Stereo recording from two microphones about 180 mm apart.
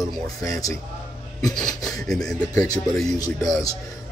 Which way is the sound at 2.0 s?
5° left (ahead or behind).